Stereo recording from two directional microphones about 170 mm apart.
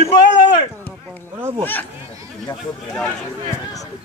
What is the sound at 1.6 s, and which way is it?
Speech, 10° left (ahead or behind).